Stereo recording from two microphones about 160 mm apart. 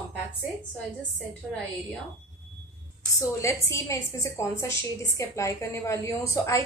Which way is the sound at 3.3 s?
20° left (ahead or behind).